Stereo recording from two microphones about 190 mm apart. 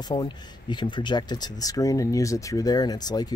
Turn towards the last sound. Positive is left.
turn(degrees=20)  # may be behind; listen again after turning